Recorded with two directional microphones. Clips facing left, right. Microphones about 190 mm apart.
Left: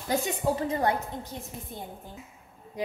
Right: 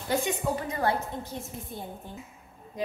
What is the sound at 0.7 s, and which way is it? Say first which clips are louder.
Speech: left 1 dB; 20° left (ahead or behind).